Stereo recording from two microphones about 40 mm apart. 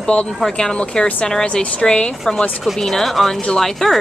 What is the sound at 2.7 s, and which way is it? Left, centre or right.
Speech, centre.